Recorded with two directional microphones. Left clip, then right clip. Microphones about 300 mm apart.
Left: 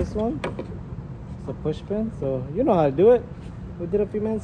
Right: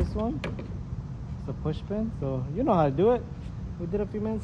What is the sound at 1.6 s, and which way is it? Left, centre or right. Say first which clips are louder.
Speech: left 6 dB; centre.